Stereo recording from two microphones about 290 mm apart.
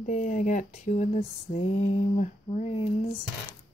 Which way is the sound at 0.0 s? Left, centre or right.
Left.